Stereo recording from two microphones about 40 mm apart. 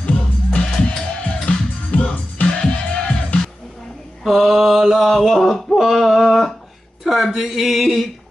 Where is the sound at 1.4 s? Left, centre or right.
Left.